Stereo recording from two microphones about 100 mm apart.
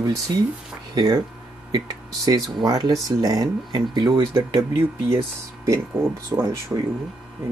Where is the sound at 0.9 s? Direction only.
45° right (ahead or behind).